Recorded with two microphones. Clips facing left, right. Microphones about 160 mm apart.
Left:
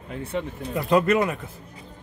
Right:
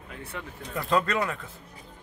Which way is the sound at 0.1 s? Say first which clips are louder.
Left 10 dB; 25° left (ahead or behind).